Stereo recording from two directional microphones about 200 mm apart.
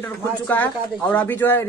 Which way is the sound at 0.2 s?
10° left (ahead or behind).